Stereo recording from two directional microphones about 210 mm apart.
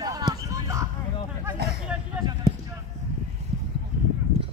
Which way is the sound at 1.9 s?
5° right (ahead or behind).